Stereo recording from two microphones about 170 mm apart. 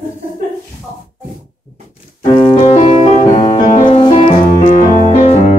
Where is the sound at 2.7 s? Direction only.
45° left (ahead or behind).